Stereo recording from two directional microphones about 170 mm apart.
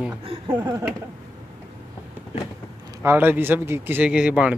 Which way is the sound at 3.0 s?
10° right (ahead or behind).